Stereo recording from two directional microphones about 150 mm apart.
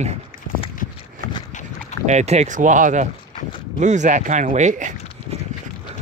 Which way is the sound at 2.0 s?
50° right (ahead or behind).